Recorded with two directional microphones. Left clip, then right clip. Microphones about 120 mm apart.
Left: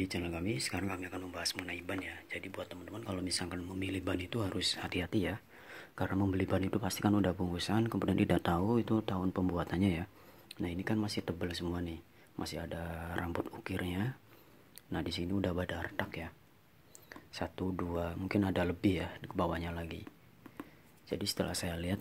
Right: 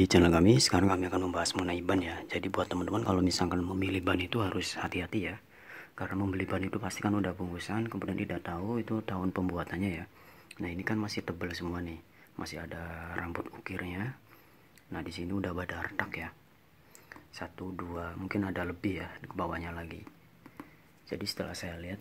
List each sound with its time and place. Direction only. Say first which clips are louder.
0.0 s speech: right 14 dB; 70° right (ahead or behind); by 3.7 s 35° right (ahead or behind)
3.8 s speech: right 5 dB; 5° right (ahead or behind)
4.8 s speech: right 2 dB; 10° left (ahead or behind)
5.2 s a sound: even; 25° left (ahead or behind)
6.3 s speech: even; 20° left (ahead or behind); by 8.6 s 50° left (ahead or behind)
8.6 s speech: left 2 dB; 25° left (ahead or behind)
9.2 s speech: right 1 dB; centre (ahead or behind)
9.5 s speech: even; 20° left (ahead or behind)
9.8 s speech: left 2 dB; 35° left (ahead or behind)
10.6 s speech: right 2 dB; 15° left (ahead or behind)
17.1 s a sound: left 2 dB; 30° left (ahead or behind)
17.8 s speech: left 1 dB; 20° left (ahead or behind)
21.1 s speech: even; 15° left (ahead or behind)
21.4 s speech: left 2 dB; 25° left (ahead or behind)